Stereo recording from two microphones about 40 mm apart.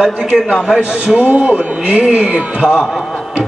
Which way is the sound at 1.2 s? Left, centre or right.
Right.